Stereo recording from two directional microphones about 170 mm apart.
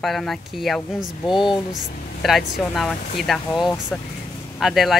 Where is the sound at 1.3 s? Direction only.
30° left (ahead or behind).